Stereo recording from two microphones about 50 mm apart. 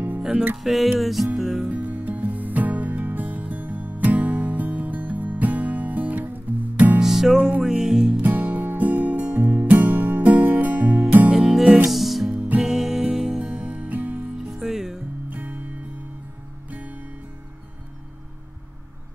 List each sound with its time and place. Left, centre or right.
0.2 s music: centre
0.6 s music: centre
1.7 s music: right
7.0 s music: centre
8.2 s music: right
11.3 s music: centre
12.3 s music: right
12.6 s music: centre
13.7 s music: right
14.4 s music: centre
15.2 s music: right
16.7 s music: right